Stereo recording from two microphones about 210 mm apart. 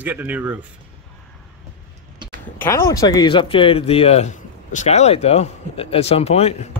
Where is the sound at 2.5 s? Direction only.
10° left (ahead or behind); by 6.5 s 30° left (ahead or behind).